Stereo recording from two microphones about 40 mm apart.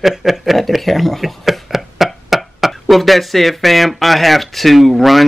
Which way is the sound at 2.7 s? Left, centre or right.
Centre.